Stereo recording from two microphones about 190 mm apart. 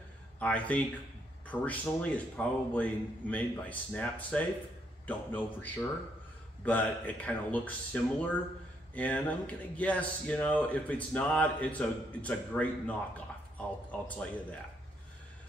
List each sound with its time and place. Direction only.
0.4 s speech: 5° left (ahead or behind)